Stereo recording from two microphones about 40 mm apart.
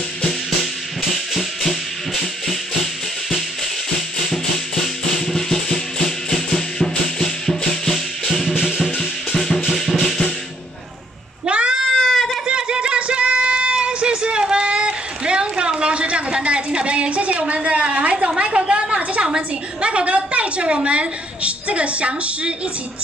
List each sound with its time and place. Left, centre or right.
1.1 s music: centre
8.5 s music: centre
9.3 s music: centre
11.4 s cat: right
11.8 s goat: centre
12.4 s music: right
18.4 s a sound: right